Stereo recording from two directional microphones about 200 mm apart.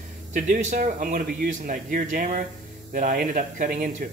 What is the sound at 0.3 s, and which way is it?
Speech, 35° right (ahead or behind).